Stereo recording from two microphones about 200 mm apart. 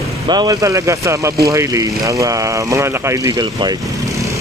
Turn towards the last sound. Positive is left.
turn(degrees=-20)  # may be behind; listen again after turning